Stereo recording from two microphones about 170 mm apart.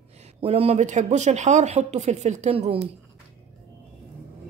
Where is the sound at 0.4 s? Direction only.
35° right (ahead or behind).